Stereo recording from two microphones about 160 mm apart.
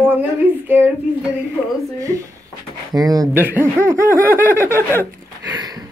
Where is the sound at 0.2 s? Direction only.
10° right (ahead or behind).